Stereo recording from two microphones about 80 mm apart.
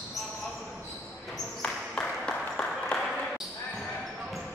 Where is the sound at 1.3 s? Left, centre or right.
Centre.